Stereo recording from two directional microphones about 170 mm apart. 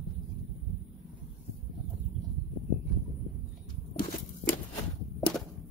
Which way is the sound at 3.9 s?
55° left (ahead or behind).